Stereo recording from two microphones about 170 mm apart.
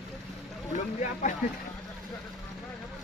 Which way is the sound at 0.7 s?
45° left (ahead or behind).